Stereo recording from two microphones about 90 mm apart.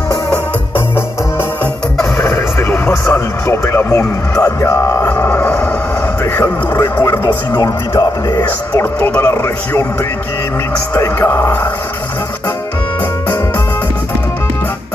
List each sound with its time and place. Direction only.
2.9 s radio: 30° left (ahead or behind)
5.2 s music: 25° left (ahead or behind)
6.3 s speech: 20° left (ahead or behind)
7.2 s speech: 50° left (ahead or behind)
9.0 s speech: 20° left (ahead or behind)
11.2 s speech: 30° left (ahead or behind)